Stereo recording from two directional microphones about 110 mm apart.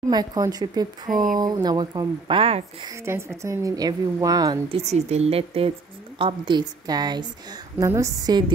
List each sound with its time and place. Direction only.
0.1 s speech: 35° right (ahead or behind); by 2.6 s 60° right (ahead or behind)
3.1 s speech: 25° right (ahead or behind)
4.6 s a woman's voice: 75° right (ahead or behind)
6.1 s a woman's voice: 50° right (ahead or behind)
7.8 s speech: 30° right (ahead or behind)